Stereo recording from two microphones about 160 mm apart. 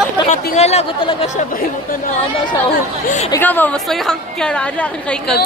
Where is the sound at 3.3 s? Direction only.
10° left (ahead or behind).